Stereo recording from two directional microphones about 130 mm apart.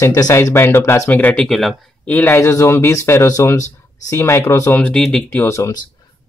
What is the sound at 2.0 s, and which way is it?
Speech, 15° left (ahead or behind).